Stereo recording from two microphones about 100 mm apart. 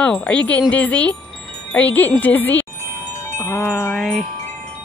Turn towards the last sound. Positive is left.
turn(degrees=5)  # may be behind; listen again after turning